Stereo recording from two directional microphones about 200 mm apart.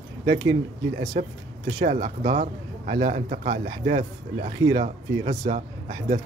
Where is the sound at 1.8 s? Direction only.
40° right (ahead or behind).